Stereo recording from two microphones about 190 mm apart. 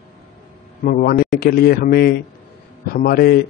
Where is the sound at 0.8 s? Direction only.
50° left (ahead or behind).